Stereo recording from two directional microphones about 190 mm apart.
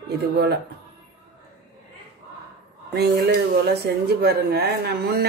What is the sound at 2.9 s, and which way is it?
Speech, 60° right (ahead or behind).